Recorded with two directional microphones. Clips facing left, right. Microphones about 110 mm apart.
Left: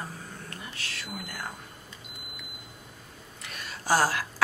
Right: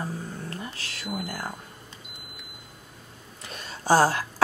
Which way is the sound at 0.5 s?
35° right (ahead or behind).